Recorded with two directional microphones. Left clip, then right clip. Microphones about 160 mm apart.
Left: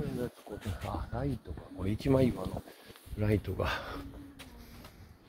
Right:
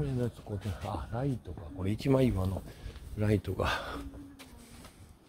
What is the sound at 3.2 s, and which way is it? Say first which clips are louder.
Speech: right 1 dB; 25° right (ahead or behind).